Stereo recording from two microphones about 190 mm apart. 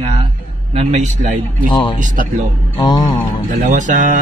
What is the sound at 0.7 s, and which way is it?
Speech, 35° right (ahead or behind).